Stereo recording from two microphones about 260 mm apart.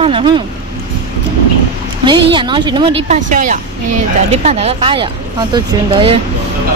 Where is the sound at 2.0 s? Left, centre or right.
Centre.